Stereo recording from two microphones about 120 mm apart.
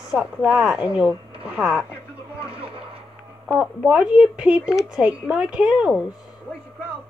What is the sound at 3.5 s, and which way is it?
Speech, 10° right (ahead or behind).